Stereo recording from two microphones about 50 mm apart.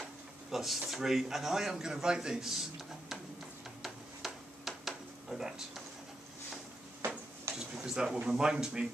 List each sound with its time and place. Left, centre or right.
0.5 s speech: centre
3.8 s tick-tock: centre
7.5 s a sound: centre
8.3 s speech: centre